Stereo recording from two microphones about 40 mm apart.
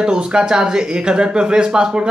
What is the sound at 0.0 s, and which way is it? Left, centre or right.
Speech, right.